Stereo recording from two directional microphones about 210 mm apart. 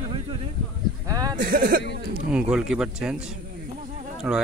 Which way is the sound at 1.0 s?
15° right (ahead or behind).